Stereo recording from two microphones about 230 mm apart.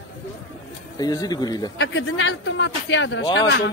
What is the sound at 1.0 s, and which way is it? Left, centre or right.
Speech, centre.